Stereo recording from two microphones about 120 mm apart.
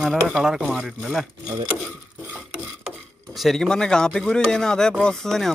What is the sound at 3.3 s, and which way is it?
Speech, centre (ahead or behind).